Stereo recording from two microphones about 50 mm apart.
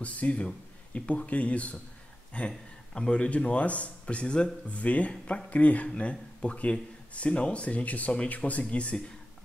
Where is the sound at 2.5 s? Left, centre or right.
Centre.